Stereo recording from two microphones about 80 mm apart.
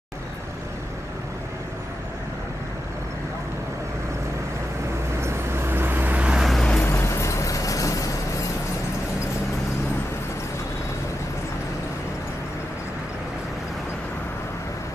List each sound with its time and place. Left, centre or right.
5.2 s vehicle: right; by 6.4 s centre
6.4 s vehicle: centre
6.8 s music: left